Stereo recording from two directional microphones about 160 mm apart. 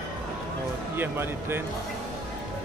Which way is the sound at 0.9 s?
15° right (ahead or behind).